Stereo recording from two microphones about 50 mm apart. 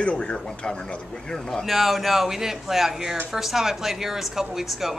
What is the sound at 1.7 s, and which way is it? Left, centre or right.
Speech, centre.